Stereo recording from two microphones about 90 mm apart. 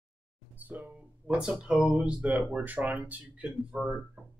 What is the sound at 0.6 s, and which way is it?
Speech, 20° right (ahead or behind).